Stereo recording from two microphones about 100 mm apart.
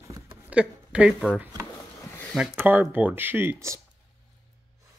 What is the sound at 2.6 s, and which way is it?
Speech, 20° right (ahead or behind).